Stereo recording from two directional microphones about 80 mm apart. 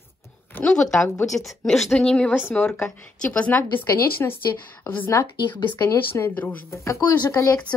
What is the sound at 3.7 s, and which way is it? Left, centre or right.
A woman's voice, left.